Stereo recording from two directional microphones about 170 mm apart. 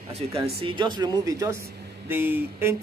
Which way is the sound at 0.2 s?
35° right (ahead or behind).